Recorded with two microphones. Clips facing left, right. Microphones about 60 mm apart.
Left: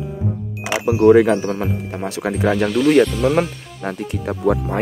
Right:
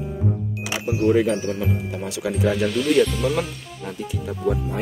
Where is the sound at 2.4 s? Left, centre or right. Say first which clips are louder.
Left 5 dB; left.